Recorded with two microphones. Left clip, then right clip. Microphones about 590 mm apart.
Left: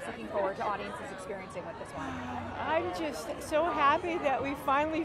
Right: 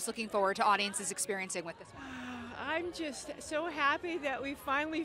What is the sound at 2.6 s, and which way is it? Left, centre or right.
Speech, right.